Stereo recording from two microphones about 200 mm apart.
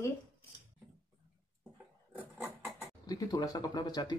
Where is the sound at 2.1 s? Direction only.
10° right (ahead or behind).